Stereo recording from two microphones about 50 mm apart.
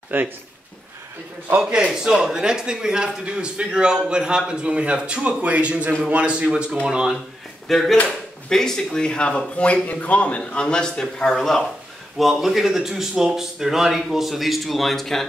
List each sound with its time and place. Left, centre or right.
0.1 s speech: right
1.6 s a man's voice: centre
7.6 s speech: centre
9.8 s a man's voice: left; by 15.2 s centre